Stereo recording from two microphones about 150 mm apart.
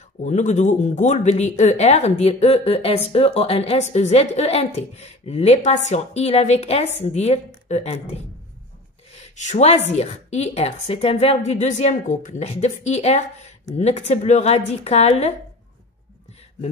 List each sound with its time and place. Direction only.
0.2 s speech: 50° left (ahead or behind)